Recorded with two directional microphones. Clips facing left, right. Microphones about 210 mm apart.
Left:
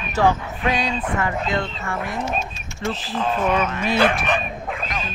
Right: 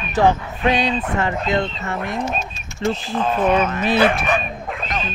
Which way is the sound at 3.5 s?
30° right (ahead or behind).